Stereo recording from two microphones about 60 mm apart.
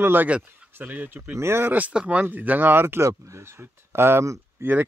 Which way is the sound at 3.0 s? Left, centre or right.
Right.